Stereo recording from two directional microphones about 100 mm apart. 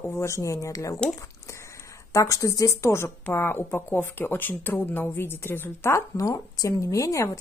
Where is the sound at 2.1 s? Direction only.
35° left (ahead or behind).